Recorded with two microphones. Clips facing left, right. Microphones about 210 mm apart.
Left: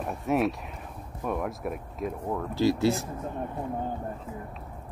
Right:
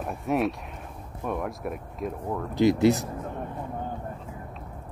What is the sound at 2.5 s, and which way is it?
Speech, 20° right (ahead or behind).